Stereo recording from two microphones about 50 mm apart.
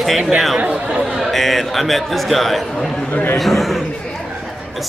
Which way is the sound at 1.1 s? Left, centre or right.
Centre.